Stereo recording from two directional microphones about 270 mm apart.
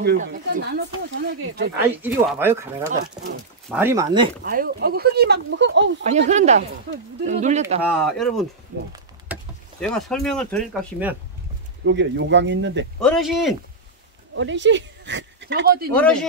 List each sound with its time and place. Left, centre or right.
0.0 s speech: right
2.0 s speech: centre
4.5 s speech: right
6.0 s speech: right
7.8 s speech: centre
9.8 s speech: centre
11.8 s speech: right
13.0 s speech: centre
14.3 s speech: right
15.9 s speech: centre